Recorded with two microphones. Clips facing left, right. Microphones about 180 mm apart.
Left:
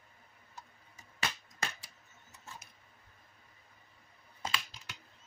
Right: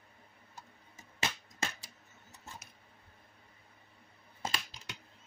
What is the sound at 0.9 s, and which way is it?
Finger snapping, 25° right (ahead or behind).